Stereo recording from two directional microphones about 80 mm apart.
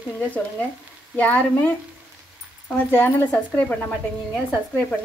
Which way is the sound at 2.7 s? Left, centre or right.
Left.